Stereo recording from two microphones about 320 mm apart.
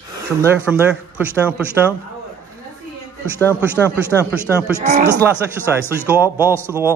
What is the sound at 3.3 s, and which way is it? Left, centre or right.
A man's voice, centre.